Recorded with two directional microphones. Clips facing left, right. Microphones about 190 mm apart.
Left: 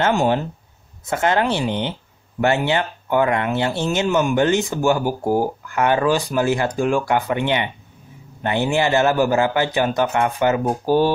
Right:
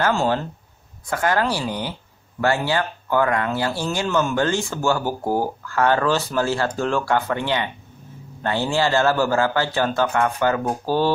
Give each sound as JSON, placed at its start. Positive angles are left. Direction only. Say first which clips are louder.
{"t": 0.0, "sound": "speech", "louder": "left 2 dB", "side_deg": 20}